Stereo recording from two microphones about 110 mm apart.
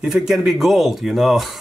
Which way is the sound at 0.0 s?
5° right (ahead or behind).